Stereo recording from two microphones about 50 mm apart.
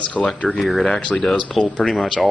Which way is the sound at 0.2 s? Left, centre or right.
Left.